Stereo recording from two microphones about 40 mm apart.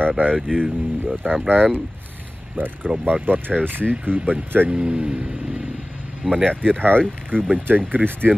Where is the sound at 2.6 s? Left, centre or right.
Right.